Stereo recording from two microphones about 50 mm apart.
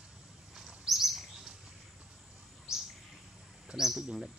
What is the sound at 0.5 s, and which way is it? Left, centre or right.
Bird, centre.